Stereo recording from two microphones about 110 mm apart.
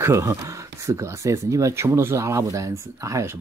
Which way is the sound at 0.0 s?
25° right (ahead or behind).